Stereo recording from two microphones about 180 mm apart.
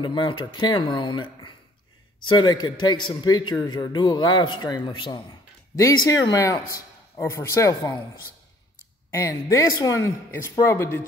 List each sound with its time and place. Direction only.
0.0 s a man's voice: 25° left (ahead or behind)
9.1 s speech: 15° left (ahead or behind)